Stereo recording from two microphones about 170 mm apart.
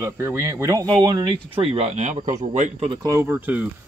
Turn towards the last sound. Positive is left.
turn(degrees=-10)  # may be behind; listen again after turning